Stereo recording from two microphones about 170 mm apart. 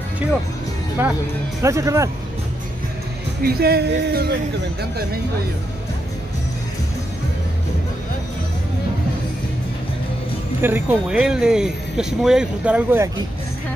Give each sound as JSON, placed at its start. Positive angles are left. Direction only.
{"t": 1.0, "sound": "speech", "side_deg": -10}
{"t": 3.4, "sound": "speech", "side_deg": -65}
{"t": 10.6, "sound": "speech", "side_deg": -10}